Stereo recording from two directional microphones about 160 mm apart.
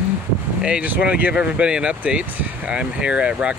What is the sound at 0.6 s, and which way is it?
Speech, 5° right (ahead or behind).